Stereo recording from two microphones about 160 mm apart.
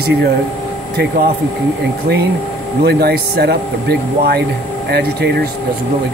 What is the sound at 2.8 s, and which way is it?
Speech, 85° right.